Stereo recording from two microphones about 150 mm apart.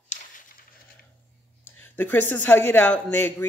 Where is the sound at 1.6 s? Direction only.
10° left (ahead or behind).